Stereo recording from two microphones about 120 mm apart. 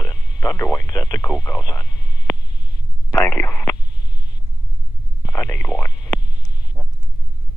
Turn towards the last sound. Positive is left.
turn(degrees=10)  # may be behind; listen again after turning